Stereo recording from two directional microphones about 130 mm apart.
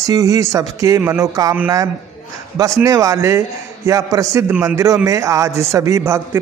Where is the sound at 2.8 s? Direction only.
25° right (ahead or behind).